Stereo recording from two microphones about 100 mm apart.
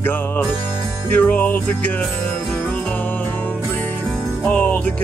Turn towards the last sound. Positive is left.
turn(degrees=15)  # may be behind; listen again after turning